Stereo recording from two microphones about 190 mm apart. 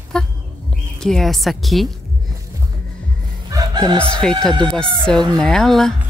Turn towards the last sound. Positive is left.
turn(degrees=0)  # may be behind; listen again after turning